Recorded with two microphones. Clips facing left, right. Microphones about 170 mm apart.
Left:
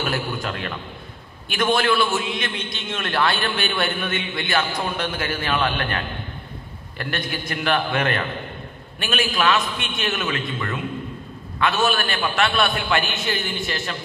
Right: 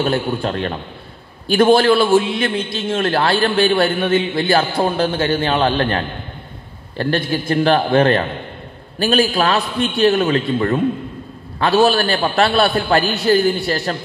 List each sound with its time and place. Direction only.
0.0 s a man's voice: 30° right (ahead or behind)